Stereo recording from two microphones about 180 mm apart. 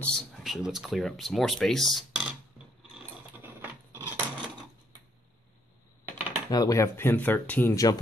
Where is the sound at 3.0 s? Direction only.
10° right (ahead or behind).